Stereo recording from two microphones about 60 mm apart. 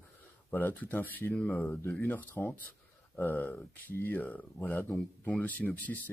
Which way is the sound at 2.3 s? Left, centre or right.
Left.